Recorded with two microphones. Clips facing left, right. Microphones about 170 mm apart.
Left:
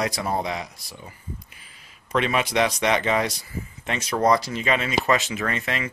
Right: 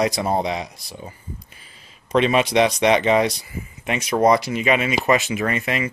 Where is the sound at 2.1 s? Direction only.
20° right (ahead or behind).